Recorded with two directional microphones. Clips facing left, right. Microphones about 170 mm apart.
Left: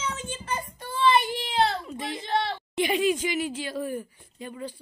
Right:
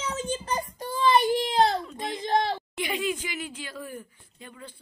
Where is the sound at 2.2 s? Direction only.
40° right (ahead or behind).